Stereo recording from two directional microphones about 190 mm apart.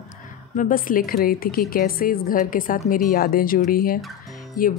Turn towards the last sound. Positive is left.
turn(degrees=50)  # may be behind; listen again after turning